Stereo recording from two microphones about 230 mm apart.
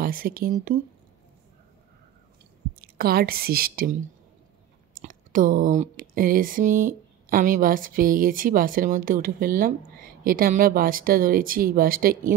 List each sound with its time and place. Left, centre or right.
0.0 s speech: right
2.8 s a woman's voice: right
5.0 s speech: right